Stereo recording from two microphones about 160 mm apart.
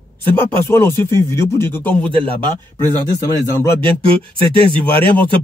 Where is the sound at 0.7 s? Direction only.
15° left (ahead or behind).